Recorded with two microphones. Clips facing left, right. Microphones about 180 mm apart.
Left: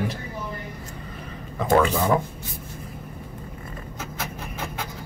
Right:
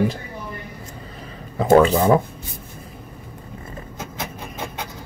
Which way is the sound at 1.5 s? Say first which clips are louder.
Right 6 dB; 30° right (ahead or behind).